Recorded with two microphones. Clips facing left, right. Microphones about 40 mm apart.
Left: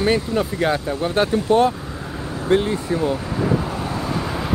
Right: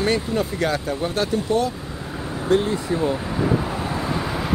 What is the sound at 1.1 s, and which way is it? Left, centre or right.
Speech, left.